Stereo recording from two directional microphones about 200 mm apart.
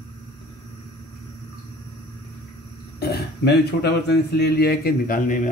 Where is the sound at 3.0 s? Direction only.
55° left (ahead or behind).